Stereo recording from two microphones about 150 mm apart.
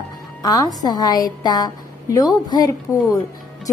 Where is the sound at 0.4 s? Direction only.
25° left (ahead or behind).